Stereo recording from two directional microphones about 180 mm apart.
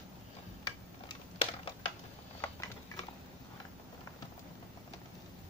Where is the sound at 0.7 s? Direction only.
25° left (ahead or behind).